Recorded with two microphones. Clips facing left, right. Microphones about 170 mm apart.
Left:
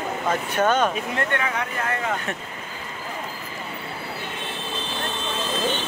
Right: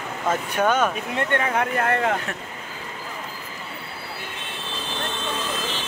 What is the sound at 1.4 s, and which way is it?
Speech, 50° right (ahead or behind).